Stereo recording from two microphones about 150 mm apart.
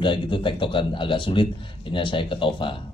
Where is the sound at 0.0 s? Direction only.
35° left (ahead or behind).